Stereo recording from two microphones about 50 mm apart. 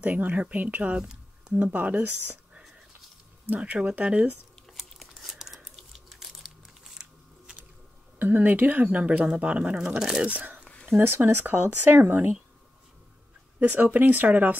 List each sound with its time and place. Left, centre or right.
0.0 s speech: right
0.9 s a sound: centre
1.6 s speech: right
3.4 s speech: right
4.8 s a sound: centre
8.2 s speech: right
8.8 s speech: right
9.8 s speech: centre
10.2 s speech: right
11.0 s speech: right
13.6 s speech: right